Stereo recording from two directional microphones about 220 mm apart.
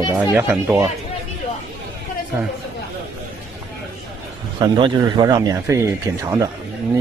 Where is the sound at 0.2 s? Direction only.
5° right (ahead or behind).